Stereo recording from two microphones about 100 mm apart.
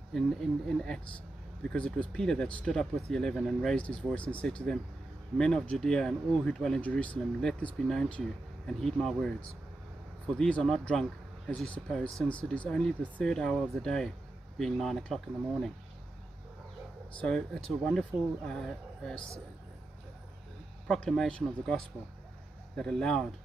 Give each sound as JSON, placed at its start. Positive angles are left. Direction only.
{"t": 0.1, "sound": "speech", "side_deg": 0}
{"t": 17.2, "sound": "speech", "side_deg": 10}
{"t": 20.8, "sound": "speech", "side_deg": 5}